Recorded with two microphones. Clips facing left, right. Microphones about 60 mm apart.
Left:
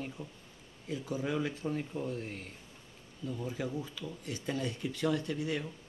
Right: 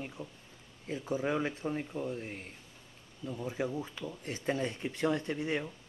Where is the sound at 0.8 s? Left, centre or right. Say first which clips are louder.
Right 2 dB; right.